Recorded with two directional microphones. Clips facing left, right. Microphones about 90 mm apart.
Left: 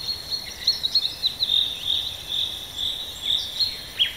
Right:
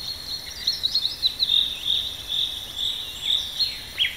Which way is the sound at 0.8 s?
35° left (ahead or behind).